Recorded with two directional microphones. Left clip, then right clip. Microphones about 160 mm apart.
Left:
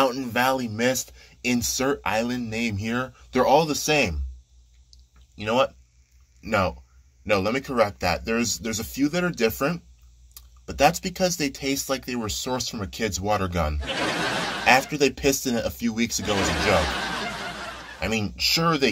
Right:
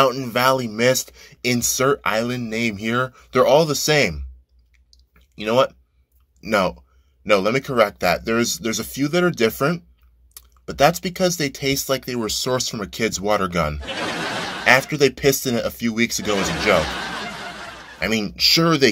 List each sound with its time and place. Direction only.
0.0 s speech: 15° right (ahead or behind)
5.3 s speech: 25° right (ahead or behind)
17.9 s speech: 20° right (ahead or behind)